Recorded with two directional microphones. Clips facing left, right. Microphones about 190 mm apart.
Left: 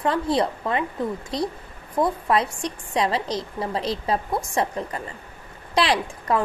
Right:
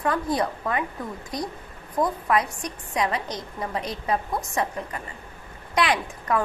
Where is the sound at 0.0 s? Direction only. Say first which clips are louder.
Left 3 dB; 25° left (ahead or behind).